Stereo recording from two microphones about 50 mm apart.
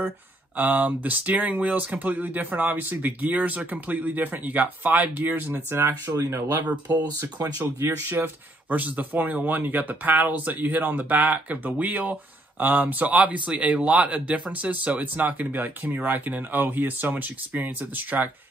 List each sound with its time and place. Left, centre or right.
0.6 s speech: right
8.1 s speech: right